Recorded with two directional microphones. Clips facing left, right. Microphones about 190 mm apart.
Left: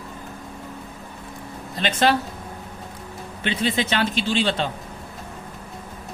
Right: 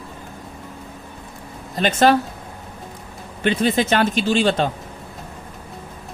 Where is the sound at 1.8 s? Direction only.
45° right (ahead or behind).